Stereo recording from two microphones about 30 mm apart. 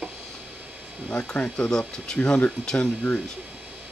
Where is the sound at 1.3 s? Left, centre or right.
Left.